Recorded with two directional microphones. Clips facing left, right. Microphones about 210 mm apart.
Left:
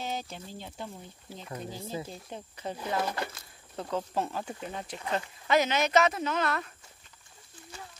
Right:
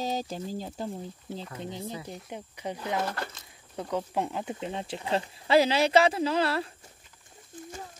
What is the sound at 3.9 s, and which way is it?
Speech, 15° right (ahead or behind).